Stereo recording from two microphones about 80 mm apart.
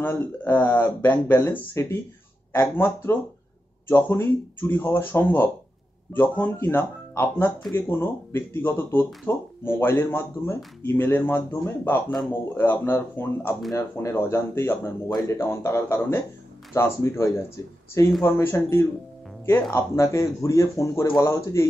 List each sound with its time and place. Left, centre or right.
0.0 s speech: left